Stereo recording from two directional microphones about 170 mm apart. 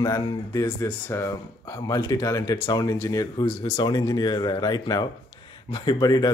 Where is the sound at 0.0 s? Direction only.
25° left (ahead or behind).